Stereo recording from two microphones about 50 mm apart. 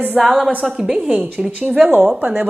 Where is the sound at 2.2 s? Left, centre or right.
Right.